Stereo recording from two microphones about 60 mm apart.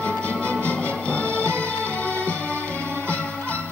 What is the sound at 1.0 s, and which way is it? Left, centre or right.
Music, left.